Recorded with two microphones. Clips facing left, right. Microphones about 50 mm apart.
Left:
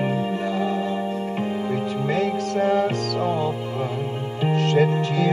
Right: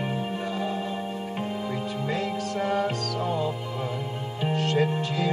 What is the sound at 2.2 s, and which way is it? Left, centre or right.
Music, left.